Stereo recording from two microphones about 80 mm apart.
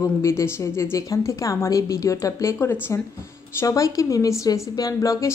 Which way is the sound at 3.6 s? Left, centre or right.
Left.